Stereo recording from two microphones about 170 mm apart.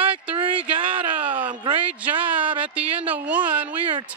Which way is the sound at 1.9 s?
10° right (ahead or behind).